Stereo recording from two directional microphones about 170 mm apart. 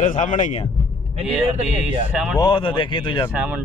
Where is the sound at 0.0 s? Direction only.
50° left (ahead or behind).